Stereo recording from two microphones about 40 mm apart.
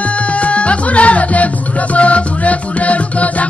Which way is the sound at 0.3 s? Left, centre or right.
Left.